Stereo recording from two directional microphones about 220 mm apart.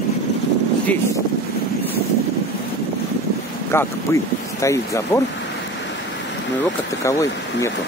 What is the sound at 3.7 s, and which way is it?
Speech, 15° left (ahead or behind).